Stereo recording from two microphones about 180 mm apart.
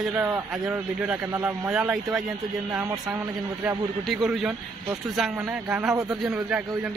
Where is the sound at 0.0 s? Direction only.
10° right (ahead or behind).